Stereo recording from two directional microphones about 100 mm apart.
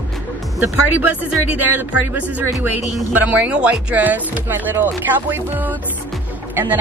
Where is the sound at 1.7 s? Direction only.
15° right (ahead or behind).